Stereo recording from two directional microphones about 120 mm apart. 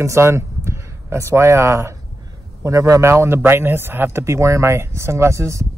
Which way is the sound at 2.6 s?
25° right (ahead or behind).